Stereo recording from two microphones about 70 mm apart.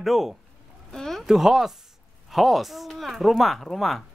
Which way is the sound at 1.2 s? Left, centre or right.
Centre.